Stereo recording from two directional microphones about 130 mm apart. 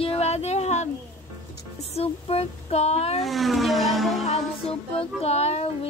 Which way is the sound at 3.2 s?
Centre (ahead or behind).